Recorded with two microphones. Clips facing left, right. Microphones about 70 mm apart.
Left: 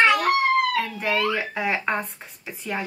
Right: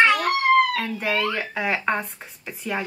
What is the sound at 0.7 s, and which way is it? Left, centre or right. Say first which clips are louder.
Speech: left 1 dB; centre.